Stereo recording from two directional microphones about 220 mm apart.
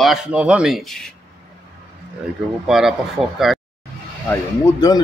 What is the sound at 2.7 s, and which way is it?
Speech, centre (ahead or behind).